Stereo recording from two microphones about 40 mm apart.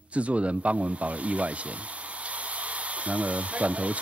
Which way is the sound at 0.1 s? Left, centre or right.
Right.